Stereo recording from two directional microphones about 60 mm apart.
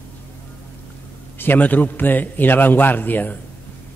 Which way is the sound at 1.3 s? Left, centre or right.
Left.